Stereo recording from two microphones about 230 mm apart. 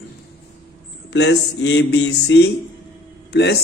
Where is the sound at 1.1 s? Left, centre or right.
Left.